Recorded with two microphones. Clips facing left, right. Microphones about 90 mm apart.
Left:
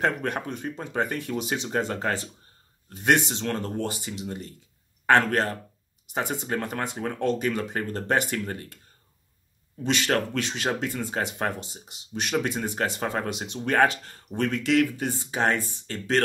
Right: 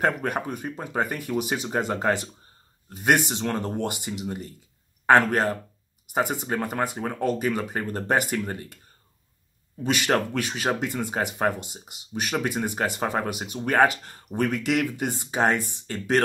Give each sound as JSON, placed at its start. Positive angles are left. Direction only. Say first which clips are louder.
{"t": 0.0, "sound": "speech", "louder": "right 2 dB", "side_deg": -10}
{"t": 9.8, "sound": "speech", "louder": "right 1 dB", "side_deg": -10}